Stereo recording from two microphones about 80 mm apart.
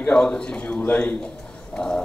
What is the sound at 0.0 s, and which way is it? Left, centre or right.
A man's voice, centre.